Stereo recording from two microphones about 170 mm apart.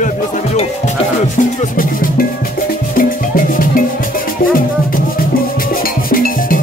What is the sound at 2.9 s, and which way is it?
Music, 55° left (ahead or behind).